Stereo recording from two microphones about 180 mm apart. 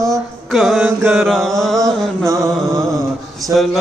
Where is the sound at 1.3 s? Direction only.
Centre (ahead or behind).